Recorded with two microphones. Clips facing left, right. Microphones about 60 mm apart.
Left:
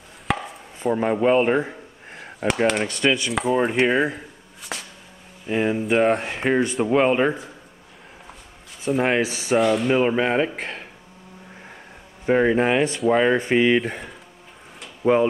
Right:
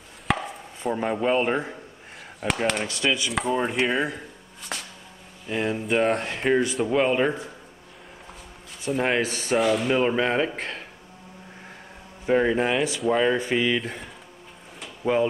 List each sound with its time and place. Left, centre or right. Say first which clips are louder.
0.3 s chopping: even; centre
0.9 s speech: left 5 dB; centre
4.7 s a sound: left 1 dB; centre
5.5 s speech: left 4 dB; centre
8.8 s speech: left 3 dB; centre
12.3 s speech: left 3 dB; centre
13.8 s speech: left 4 dB; centre